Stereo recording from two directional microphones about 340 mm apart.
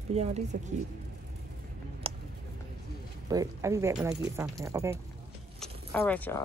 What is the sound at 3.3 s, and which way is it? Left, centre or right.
Speech, centre.